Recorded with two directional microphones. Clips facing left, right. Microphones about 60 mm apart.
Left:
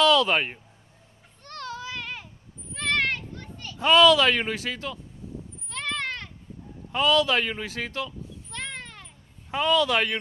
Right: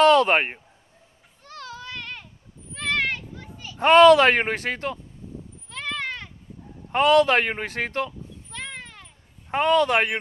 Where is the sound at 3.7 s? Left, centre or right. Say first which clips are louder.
Right 5 dB; right.